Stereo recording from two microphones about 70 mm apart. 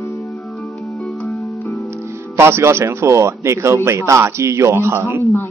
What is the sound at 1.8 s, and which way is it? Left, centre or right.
Speech, right.